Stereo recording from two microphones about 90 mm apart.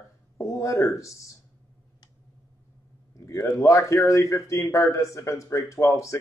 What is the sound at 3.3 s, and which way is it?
Speech, 45° left (ahead or behind).